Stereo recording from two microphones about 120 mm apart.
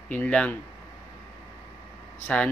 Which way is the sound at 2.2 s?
10° left (ahead or behind).